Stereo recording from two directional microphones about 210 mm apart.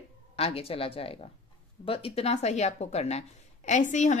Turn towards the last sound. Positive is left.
turn(degrees=35)  # may be behind; listen again after turning